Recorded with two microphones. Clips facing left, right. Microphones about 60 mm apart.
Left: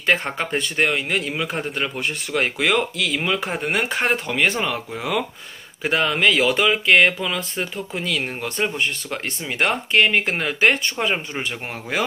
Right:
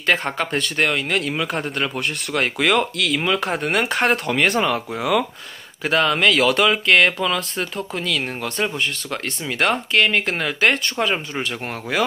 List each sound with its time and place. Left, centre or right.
0.0 s a man's voice: centre
5.9 s a man's voice: centre